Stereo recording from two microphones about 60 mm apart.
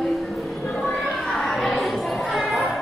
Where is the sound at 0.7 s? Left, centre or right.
Left.